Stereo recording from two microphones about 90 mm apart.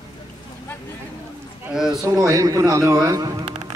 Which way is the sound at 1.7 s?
5° right (ahead or behind).